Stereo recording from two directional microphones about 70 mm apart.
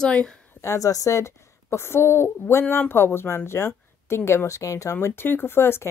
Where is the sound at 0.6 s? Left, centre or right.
Left.